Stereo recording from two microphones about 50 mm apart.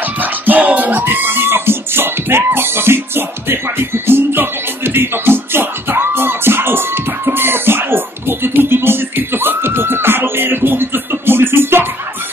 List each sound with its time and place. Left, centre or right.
0.2 s music: right